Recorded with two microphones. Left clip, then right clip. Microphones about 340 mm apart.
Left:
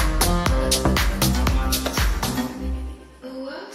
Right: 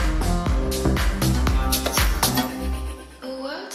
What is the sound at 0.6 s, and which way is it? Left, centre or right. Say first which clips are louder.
Music: left 2 dB; left.